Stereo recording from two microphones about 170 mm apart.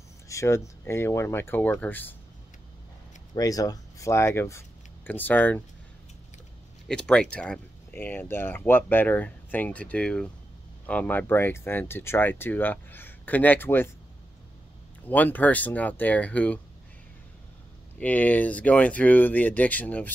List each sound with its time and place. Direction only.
0.3 s speech: 15° left (ahead or behind)
3.3 s speech: 20° left (ahead or behind)
6.9 s speech: 5° left (ahead or behind)
15.0 s speech: 10° left (ahead or behind)
17.9 s speech: 10° left (ahead or behind)